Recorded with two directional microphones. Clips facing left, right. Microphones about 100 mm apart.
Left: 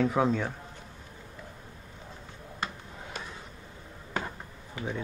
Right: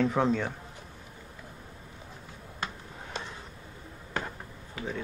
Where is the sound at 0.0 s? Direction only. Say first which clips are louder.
Even; 5° left (ahead or behind).